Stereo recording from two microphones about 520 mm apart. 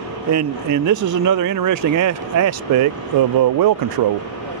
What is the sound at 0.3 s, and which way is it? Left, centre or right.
Speech, right.